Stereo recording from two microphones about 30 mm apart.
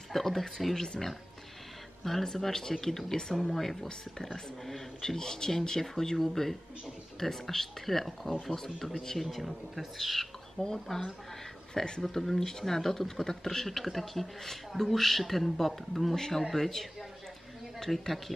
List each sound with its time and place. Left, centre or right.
0.1 s speech: centre
2.2 s speech: centre
10.6 s speech: centre
12.1 s speech: centre
16.2 s speech: centre